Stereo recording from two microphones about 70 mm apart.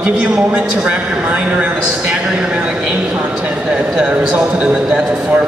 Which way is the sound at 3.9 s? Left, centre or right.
Centre.